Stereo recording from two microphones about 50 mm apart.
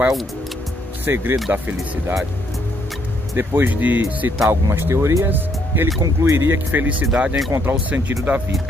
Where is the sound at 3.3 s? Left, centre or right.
Right.